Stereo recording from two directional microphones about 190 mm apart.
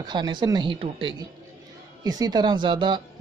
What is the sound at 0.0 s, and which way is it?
Speech, 25° right (ahead or behind).